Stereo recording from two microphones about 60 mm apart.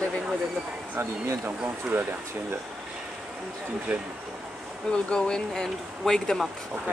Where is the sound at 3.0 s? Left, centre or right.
Centre.